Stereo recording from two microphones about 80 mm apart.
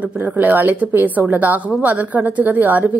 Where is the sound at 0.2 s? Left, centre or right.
Right.